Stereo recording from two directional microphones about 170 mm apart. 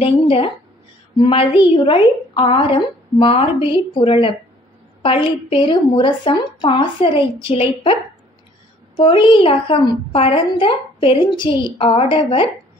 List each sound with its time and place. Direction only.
0.0 s a woman's voice: 35° left (ahead or behind)